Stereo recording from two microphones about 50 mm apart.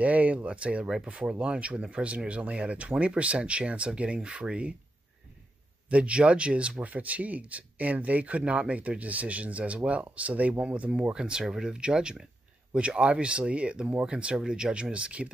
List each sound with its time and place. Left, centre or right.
0.0 s speech: right
5.9 s speech: right